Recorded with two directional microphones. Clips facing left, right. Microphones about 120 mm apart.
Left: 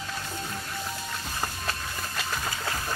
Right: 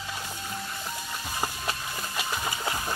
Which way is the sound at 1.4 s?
10° right (ahead or behind).